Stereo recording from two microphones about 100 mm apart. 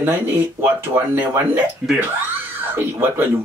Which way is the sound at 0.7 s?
20° right (ahead or behind).